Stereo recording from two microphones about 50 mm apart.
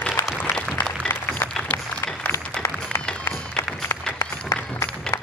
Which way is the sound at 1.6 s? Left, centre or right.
Left.